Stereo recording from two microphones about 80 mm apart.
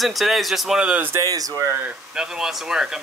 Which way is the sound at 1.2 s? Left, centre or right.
Right.